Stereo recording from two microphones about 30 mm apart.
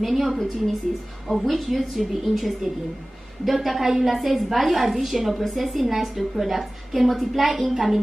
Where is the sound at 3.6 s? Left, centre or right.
Centre.